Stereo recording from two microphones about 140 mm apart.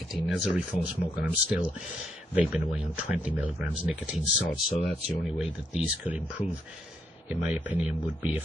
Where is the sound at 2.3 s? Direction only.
5° right (ahead or behind).